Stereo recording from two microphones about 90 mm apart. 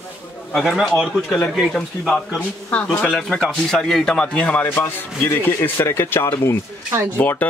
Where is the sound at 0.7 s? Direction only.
Centre (ahead or behind); by 3.0 s 20° left (ahead or behind).